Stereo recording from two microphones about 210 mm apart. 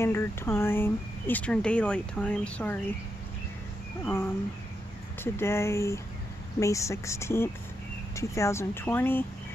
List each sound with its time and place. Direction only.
0.0 s speech: 10° left (ahead or behind)
4.0 s speech: 10° left (ahead or behind)